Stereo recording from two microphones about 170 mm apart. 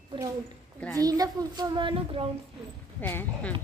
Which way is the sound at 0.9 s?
20° right (ahead or behind).